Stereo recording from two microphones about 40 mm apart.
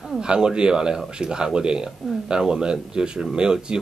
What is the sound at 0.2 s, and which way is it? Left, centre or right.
Speech, right.